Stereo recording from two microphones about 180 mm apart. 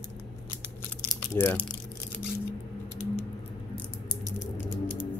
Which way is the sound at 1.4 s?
10° left (ahead or behind).